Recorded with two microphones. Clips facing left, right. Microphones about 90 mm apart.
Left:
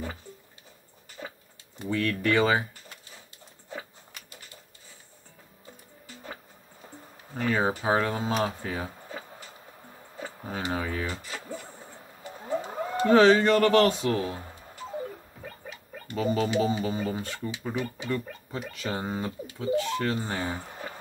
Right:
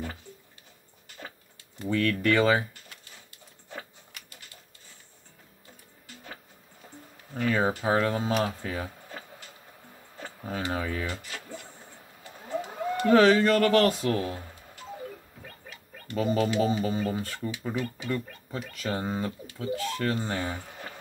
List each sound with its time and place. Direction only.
1.9 s speech: 20° left (ahead or behind)
7.3 s speech: 30° left (ahead or behind)
10.5 s speech: 30° left (ahead or behind)
16.2 s speech: 25° left (ahead or behind)